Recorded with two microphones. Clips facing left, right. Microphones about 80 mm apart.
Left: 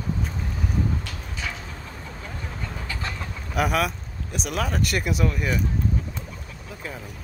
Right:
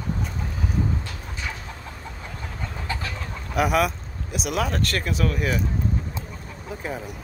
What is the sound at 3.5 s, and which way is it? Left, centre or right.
Speech, centre.